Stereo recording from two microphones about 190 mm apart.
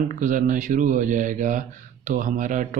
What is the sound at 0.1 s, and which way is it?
Speech, 45° right (ahead or behind).